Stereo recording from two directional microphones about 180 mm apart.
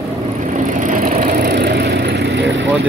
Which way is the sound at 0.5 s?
45° right (ahead or behind).